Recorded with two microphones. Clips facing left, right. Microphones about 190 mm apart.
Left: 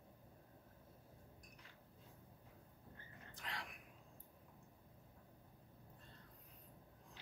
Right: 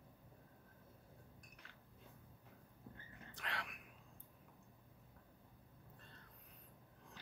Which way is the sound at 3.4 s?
65° right (ahead or behind).